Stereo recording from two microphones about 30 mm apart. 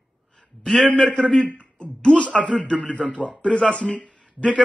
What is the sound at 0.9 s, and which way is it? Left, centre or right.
A man's voice, left.